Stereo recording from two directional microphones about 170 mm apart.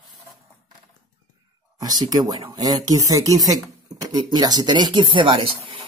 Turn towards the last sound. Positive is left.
turn(degrees=-30)  # may be behind; listen again after turning